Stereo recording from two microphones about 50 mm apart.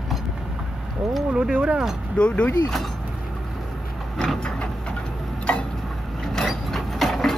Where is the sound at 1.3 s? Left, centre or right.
Centre.